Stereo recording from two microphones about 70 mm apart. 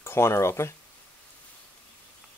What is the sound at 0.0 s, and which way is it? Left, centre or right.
Speech, left.